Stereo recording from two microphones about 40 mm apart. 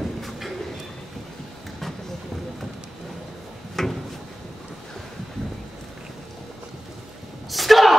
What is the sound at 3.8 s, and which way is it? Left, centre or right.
Drawer open or close, centre.